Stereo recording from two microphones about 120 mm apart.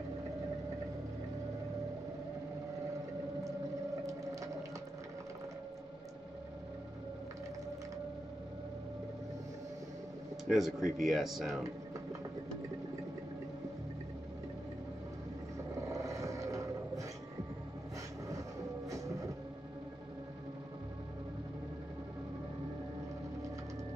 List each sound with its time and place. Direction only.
10.5 s speech: 5° right (ahead or behind)
15.7 s vehicle: 25° right (ahead or behind)
18.9 s music: 25° right (ahead or behind)